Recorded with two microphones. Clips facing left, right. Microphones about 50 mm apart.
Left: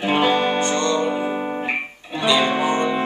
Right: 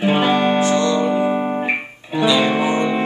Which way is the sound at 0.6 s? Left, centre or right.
Centre.